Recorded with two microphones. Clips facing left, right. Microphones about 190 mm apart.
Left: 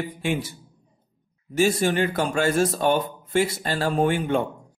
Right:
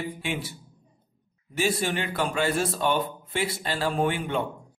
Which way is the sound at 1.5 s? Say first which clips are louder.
Left 6 dB; 45° left (ahead or behind).